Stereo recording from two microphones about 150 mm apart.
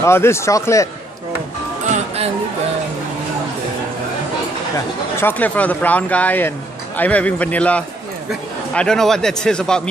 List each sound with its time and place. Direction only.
0.0 s speech: 15° left (ahead or behind)
1.9 s music: 45° right (ahead or behind)
4.7 s a man's voice: 10° left (ahead or behind)